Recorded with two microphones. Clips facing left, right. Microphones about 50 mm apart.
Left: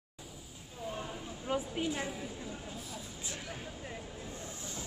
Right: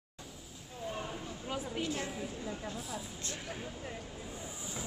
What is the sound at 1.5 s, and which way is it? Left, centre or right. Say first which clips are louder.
Speech: left 3 dB; centre.